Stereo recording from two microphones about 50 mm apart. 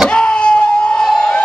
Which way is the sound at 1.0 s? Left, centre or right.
Centre.